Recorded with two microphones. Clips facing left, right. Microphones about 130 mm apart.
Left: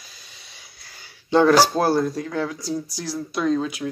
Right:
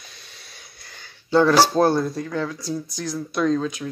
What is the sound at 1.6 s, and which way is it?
Speech, 10° left (ahead or behind).